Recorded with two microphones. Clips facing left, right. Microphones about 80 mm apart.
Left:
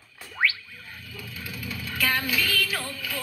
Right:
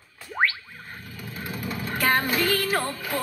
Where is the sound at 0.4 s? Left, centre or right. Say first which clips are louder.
Right 2 dB; right.